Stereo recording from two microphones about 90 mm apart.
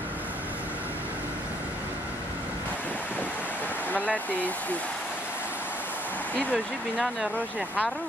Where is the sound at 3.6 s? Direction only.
20° left (ahead or behind).